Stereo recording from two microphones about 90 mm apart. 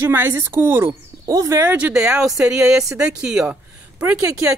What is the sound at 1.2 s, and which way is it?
Speech, 40° right (ahead or behind).